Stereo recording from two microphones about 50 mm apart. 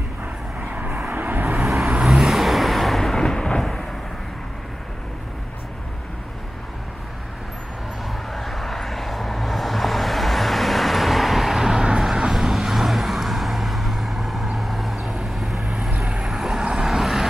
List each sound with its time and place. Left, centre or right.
0.7 s vehicle: right
2.0 s vehicle: centre
8.1 s vehicle: centre